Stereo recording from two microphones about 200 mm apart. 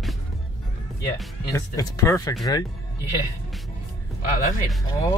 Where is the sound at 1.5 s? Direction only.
15° left (ahead or behind).